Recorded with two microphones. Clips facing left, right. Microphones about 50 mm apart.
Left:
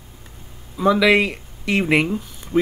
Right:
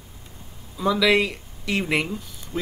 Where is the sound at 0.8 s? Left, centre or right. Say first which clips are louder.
Left 4 dB; left.